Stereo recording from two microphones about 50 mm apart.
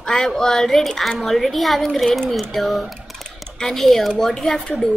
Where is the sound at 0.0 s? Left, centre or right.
Centre.